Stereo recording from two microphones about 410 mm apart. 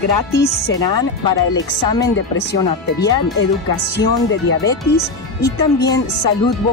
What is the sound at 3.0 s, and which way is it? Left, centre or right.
Music, centre.